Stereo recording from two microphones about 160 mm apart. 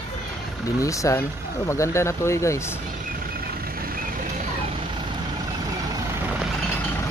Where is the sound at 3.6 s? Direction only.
65° right (ahead or behind).